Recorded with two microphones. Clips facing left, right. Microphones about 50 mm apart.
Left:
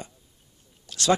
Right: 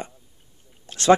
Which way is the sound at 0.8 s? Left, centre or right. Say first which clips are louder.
Even; right.